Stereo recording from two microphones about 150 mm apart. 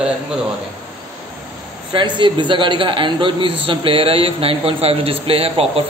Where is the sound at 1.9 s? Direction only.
35° right (ahead or behind).